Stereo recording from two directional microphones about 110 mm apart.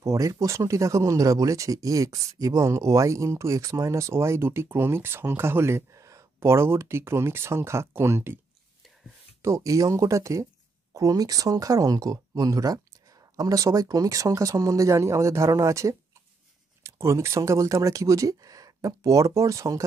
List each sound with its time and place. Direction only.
0.0 s speech: 30° right (ahead or behind)
9.4 s speech: 30° right (ahead or behind)